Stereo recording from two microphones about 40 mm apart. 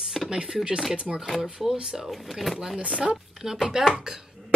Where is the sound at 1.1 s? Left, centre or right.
Centre.